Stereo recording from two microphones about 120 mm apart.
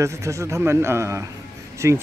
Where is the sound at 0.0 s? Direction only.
25° right (ahead or behind).